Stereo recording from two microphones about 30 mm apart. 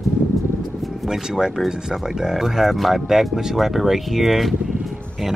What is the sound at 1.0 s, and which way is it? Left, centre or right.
Speech, centre.